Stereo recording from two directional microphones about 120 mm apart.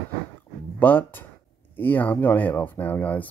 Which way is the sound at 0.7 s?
15° left (ahead or behind).